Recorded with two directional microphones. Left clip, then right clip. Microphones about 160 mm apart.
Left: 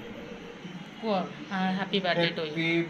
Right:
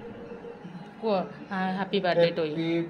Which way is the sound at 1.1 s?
75° right (ahead or behind).